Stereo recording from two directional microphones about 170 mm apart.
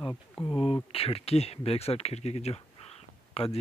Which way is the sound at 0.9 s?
35° left (ahead or behind).